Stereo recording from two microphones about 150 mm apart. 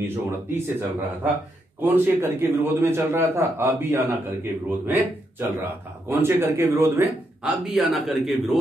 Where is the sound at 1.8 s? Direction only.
15° right (ahead or behind).